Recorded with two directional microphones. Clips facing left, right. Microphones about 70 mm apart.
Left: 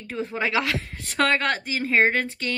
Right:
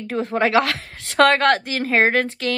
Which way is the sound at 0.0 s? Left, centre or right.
Right.